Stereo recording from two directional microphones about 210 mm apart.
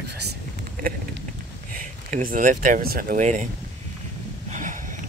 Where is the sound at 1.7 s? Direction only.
40° right (ahead or behind).